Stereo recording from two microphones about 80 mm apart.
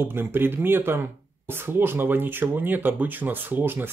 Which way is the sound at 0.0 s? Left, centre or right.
Right.